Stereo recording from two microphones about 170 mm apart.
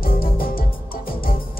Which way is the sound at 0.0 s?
60° left (ahead or behind).